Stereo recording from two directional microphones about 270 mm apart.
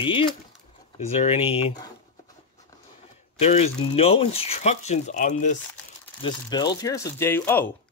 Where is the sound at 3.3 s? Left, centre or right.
Left.